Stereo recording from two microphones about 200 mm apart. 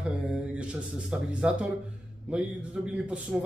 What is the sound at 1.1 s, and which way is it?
Speech, 5° right (ahead or behind).